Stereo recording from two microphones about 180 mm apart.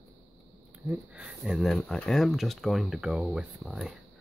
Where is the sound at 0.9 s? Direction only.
5° right (ahead or behind).